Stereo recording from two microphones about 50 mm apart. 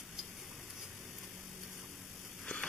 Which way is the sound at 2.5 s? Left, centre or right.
Left.